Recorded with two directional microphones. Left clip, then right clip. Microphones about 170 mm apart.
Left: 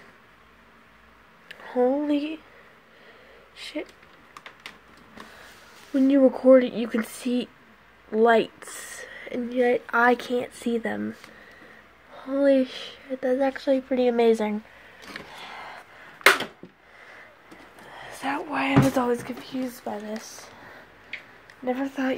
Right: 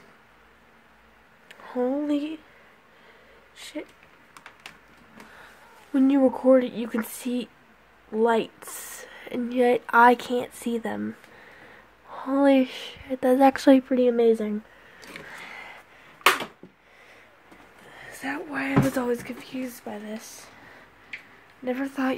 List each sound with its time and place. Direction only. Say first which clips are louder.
1.5 s speech: left 4 dB; 15° right (ahead or behind)
3.5 s speech: left 3 dB; 15° right (ahead or behind)
5.9 s speech: left 2 dB; 15° right (ahead or behind)
12.1 s a woman's voice: even; 25° right (ahead or behind)
13.2 s speech: right 5 dB; 40° right (ahead or behind)
13.6 s speech: right 5 dB; 65° right (ahead or behind)
14.1 s speech: even; 20° right (ahead or behind)
17.9 s speech: left 3 dB; 20° right (ahead or behind)
21.6 s speech: left 1 dB; 30° right (ahead or behind)